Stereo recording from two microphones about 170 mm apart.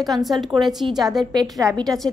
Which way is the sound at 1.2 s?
25° right (ahead or behind).